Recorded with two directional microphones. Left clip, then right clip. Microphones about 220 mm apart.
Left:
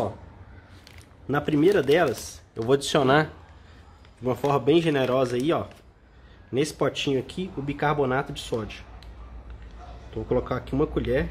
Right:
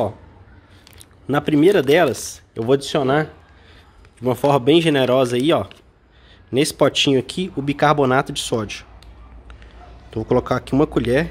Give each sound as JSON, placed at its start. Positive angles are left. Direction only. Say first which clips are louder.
{"t": 1.2, "sound": "speech", "louder": "right 6 dB", "side_deg": -35}
{"t": 2.5, "sound": "speech", "louder": "right 4 dB", "side_deg": -20}
{"t": 4.2, "sound": "speech", "louder": "right 7 dB", "side_deg": -35}
{"t": 6.5, "sound": "speech", "louder": "right 8 dB", "side_deg": -40}
{"t": 10.1, "sound": "speech", "louder": "right 7 dB", "side_deg": -50}